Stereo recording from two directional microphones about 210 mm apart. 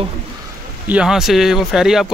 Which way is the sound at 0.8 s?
5° right (ahead or behind).